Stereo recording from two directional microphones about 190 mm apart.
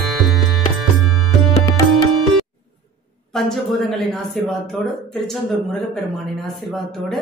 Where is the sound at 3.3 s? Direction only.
Centre (ahead or behind).